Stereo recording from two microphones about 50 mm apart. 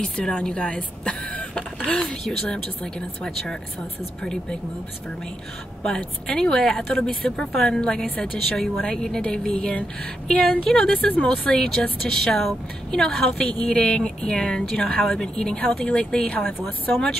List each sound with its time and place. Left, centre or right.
0.0 s a woman's voice: centre
5.9 s a woman's voice: centre
9.8 s speech: left
11.2 s a woman's voice: centre